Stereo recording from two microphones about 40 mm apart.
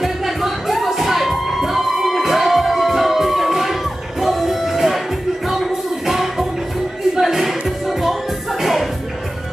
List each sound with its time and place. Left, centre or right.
0.0 s music: centre